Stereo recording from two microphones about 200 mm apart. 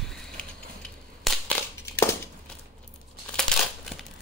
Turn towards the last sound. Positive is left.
turn(degrees=5)  # may be behind; listen again after turning